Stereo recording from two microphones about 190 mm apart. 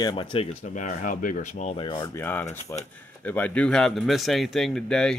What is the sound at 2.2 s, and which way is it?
Speech, 10° left (ahead or behind).